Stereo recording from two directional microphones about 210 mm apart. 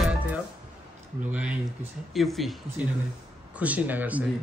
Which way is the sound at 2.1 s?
Centre (ahead or behind).